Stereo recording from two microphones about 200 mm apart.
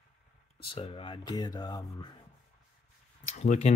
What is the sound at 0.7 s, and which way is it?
Speech, 25° left (ahead or behind).